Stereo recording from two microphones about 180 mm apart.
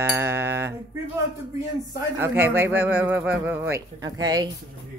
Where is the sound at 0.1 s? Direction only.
15° right (ahead or behind).